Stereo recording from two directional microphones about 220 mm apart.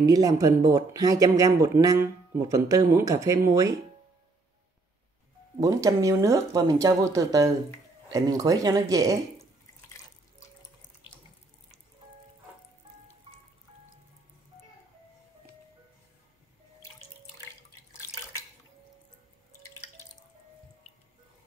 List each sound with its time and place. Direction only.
0.0 s speech: 15° right (ahead or behind)
5.6 s speech: 15° right (ahead or behind)